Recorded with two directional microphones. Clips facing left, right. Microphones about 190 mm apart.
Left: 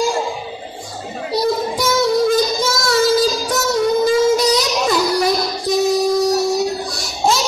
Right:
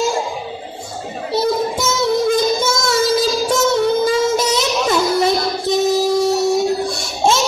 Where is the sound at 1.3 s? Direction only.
25° right (ahead or behind).